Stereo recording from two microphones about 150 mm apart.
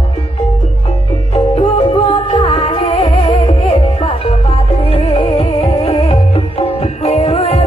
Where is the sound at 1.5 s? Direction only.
35° left (ahead or behind).